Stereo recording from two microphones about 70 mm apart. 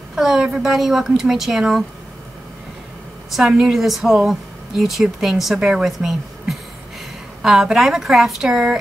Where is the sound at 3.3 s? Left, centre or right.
Centre.